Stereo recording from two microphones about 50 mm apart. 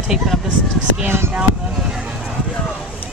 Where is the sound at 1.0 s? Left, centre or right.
Right.